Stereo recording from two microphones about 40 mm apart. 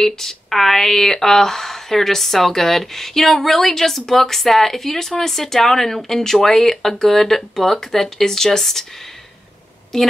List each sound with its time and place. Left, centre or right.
0.0 s speech: centre
9.9 s speech: centre